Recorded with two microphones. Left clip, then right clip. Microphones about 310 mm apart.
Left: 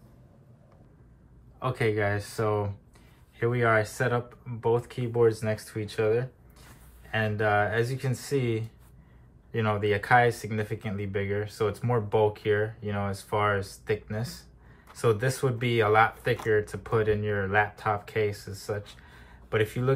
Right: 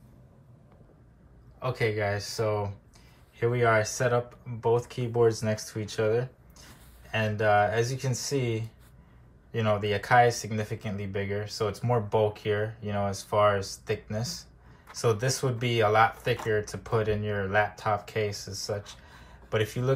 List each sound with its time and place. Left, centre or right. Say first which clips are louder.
1.6 s speech: left 1 dB; centre